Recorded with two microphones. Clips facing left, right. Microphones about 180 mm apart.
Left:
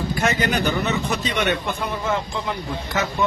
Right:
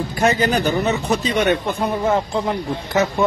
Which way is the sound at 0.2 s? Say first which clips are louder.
Right 5 dB; 35° right (ahead or behind).